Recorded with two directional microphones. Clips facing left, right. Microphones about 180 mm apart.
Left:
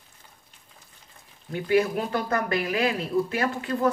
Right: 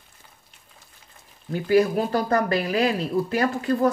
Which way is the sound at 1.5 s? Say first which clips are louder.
Right 3 dB; 35° right (ahead or behind).